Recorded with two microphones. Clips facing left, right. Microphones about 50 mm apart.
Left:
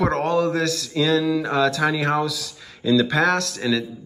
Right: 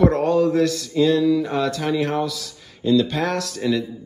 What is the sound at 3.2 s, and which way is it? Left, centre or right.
Speech, left.